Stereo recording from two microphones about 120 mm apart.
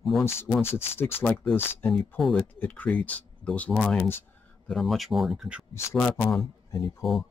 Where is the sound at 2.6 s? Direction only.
10° left (ahead or behind); by 5.6 s 5° right (ahead or behind).